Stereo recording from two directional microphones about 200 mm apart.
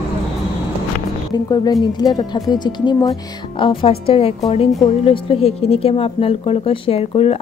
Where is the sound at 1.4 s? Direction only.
20° left (ahead or behind).